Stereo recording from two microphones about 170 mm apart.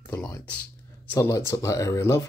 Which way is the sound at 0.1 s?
10° left (ahead or behind).